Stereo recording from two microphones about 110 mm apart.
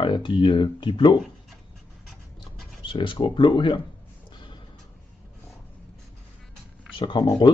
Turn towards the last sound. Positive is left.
turn(degrees=45)  # may be behind; listen again after turning